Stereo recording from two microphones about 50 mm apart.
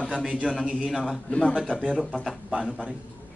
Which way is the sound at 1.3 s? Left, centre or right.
Left.